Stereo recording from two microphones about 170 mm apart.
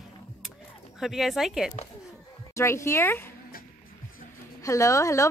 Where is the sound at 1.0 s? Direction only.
Centre (ahead or behind).